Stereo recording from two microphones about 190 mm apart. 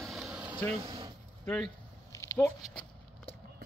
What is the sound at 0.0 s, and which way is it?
Air conditioning, centre (ahead or behind).